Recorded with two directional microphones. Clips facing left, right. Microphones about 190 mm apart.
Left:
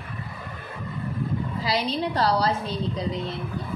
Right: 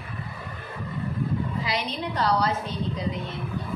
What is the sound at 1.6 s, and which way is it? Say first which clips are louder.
A woman's voice: left 4 dB; 35° left (ahead or behind).